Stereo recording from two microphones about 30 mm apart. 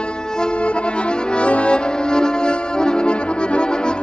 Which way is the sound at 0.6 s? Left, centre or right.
Left.